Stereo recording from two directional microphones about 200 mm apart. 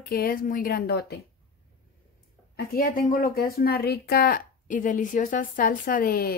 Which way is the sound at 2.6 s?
45° left (ahead or behind).